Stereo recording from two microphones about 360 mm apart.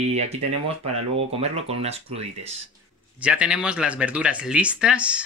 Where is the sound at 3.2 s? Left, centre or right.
Centre.